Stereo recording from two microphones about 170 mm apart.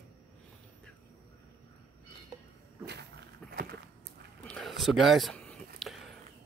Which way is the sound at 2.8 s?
80° right.